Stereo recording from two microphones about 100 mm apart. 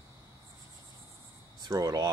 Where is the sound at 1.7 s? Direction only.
35° right (ahead or behind).